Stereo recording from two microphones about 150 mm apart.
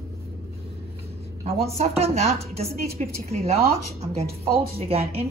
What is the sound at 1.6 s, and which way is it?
A woman's voice, 45° right (ahead or behind).